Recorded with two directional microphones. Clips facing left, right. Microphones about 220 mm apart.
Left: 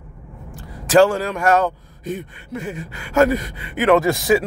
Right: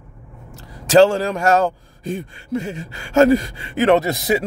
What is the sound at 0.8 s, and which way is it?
Speech, 25° right (ahead or behind).